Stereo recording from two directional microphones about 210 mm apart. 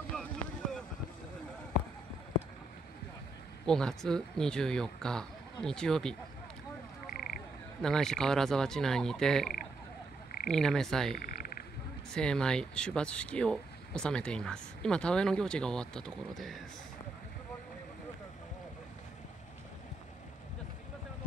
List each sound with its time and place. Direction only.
0.1 s boat: 5° left (ahead or behind)
3.6 s speech: 5° left (ahead or behind)
7.8 s speech: 5° left (ahead or behind)
10.5 s speech: centre (ahead or behind)
11.1 s frog: 45° left (ahead or behind)
12.1 s speech: 5° left (ahead or behind)